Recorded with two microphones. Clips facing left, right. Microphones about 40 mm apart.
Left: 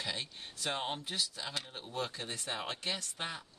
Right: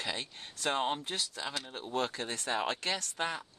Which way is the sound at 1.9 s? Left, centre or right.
Right.